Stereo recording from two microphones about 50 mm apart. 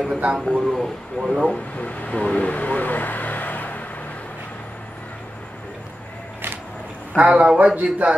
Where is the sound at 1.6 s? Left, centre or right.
Left.